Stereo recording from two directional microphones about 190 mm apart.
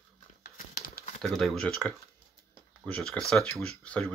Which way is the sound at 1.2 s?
Centre (ahead or behind).